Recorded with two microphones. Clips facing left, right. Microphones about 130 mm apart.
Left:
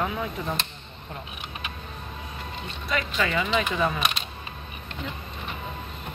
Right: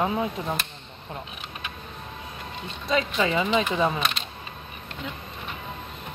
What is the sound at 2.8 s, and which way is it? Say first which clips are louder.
Speech: right 3 dB; 25° right (ahead or behind).